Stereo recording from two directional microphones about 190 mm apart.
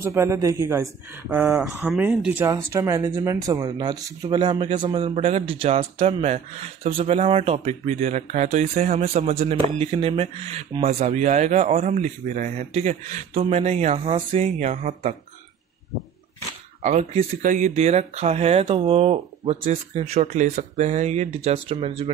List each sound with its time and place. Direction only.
0.0 s speech: 15° right (ahead or behind); by 15.1 s 35° right (ahead or behind)
16.8 s speech: 35° right (ahead or behind)
17.4 s speech: 40° right (ahead or behind)